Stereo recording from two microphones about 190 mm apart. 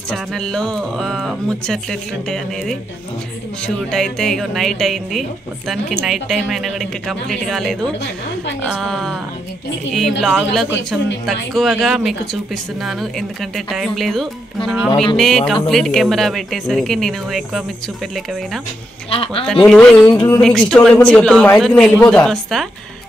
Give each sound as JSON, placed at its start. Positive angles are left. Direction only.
{"t": 0.1, "sound": "speech", "side_deg": 0}
{"t": 19.0, "sound": "speech", "side_deg": 30}
{"t": 19.4, "sound": "speech", "side_deg": 5}